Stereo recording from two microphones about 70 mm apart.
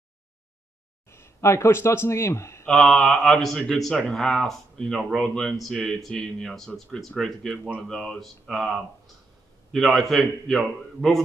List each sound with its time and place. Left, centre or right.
1.1 s speech: left
2.7 s speech: centre